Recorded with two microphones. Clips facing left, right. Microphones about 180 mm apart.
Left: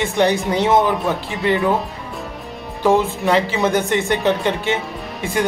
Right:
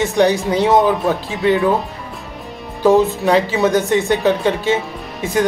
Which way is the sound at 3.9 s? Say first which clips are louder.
Right 3 dB; 15° right (ahead or behind).